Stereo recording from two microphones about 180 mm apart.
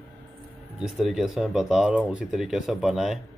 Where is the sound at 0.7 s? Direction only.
Centre (ahead or behind).